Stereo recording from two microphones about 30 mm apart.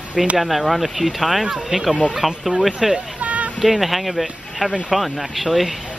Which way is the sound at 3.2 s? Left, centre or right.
Right.